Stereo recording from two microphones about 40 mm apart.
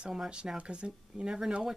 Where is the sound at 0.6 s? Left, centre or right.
Right.